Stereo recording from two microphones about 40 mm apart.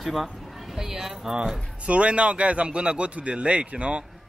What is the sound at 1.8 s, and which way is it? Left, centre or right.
A man's voice, right.